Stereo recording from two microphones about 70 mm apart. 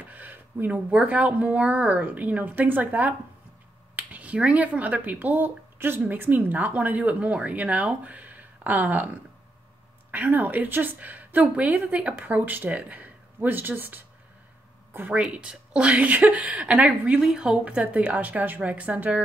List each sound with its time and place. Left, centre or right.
0.0 s speech: right
15.1 s speech: centre